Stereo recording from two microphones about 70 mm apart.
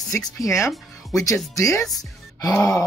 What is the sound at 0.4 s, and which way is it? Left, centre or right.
Speech, left.